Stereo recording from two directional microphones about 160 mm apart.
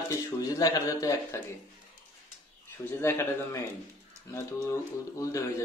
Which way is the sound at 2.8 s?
15° left (ahead or behind).